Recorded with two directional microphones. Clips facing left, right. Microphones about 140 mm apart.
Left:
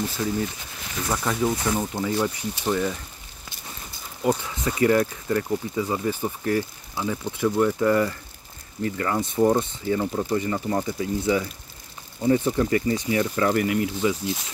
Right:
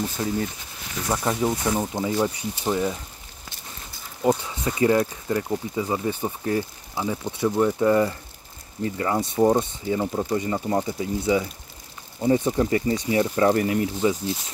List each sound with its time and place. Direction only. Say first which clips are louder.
0.2 s speech: even; 25° right (ahead or behind)
4.2 s speech: right 2 dB; 25° right (ahead or behind)